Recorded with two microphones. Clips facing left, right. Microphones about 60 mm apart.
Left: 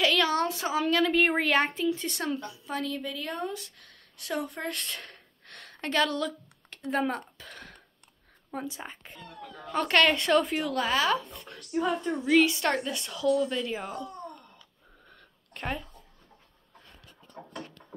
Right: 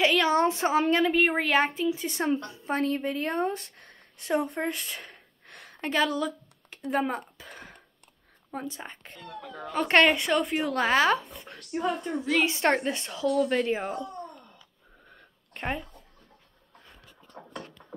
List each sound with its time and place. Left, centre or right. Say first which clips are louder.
0.0 s a woman's voice: right 3 dB; right
1.0 s speech: even; centre
2.0 s speech: right 4 dB; right
2.4 s speech: right 5 dB; right
4.7 s a sound: even; centre
8.5 s speech: even; centre
10.0 s a woman's voice: even; centre
10.6 s speech: right 4 dB; right
11.2 s speech: right 1 dB; centre
13.3 s speech: right 1 dB; right
13.7 s speech: right 5 dB; right
15.0 s a sound: right 2 dB; centre
17.3 s a sound: left 1 dB; centre